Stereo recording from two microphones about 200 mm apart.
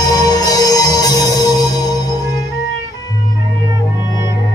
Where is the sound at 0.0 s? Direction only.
20° left (ahead or behind).